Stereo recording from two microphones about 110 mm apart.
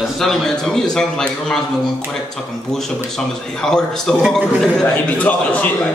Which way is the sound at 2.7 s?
5° left (ahead or behind).